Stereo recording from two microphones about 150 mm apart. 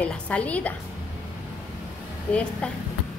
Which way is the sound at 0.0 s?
10° left (ahead or behind).